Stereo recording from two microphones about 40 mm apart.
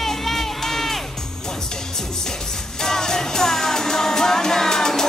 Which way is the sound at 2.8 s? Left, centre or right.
Centre.